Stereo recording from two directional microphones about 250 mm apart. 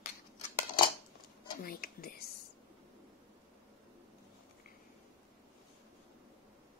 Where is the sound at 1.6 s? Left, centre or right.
Left.